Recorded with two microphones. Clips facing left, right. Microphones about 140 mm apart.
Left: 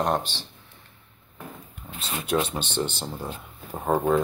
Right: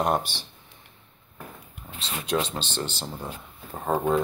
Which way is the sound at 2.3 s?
10° left (ahead or behind).